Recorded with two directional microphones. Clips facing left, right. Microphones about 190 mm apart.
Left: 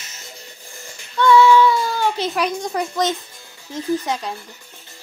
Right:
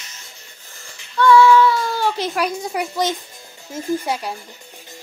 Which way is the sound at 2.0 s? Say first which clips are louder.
Even; 10° right (ahead or behind).